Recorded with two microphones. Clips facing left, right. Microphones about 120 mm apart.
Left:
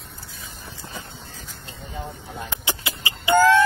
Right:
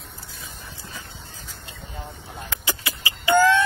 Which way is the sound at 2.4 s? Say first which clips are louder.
Right 1 dB; 25° left (ahead or behind).